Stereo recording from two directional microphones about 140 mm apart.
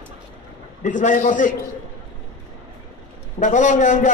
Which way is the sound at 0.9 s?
65° left (ahead or behind).